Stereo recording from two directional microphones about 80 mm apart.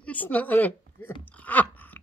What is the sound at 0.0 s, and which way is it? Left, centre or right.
A woman's voice, centre.